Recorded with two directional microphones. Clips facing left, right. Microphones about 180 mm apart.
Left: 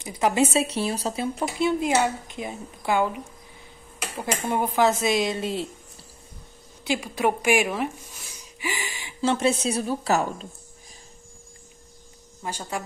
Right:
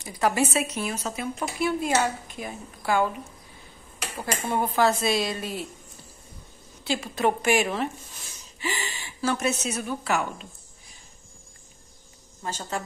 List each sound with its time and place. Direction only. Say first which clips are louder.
0.0 s a woman's voice: left 2 dB; 20° left (ahead or behind)
6.8 s speech: left 1 dB; 15° left (ahead or behind)
9.2 s a woman's voice: left 4 dB; 25° left (ahead or behind)
12.4 s speech: even; 10° left (ahead or behind)